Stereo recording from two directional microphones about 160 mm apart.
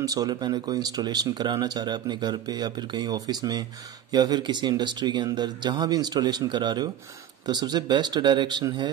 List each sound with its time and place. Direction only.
0.0 s speech: 25° right (ahead or behind)